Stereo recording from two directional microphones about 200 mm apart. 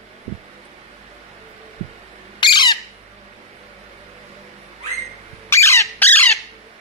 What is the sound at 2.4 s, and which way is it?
Squawk, 20° left (ahead or behind).